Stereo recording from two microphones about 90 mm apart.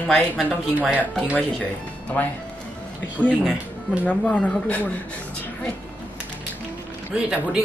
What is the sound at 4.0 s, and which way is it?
Speech, 15° left (ahead or behind).